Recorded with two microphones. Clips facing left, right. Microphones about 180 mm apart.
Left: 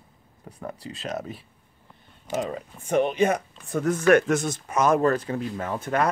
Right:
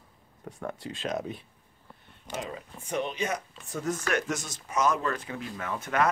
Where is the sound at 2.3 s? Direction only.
50° left (ahead or behind).